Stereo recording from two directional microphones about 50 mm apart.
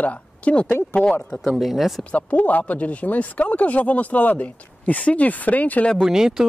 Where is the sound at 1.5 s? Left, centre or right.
Centre.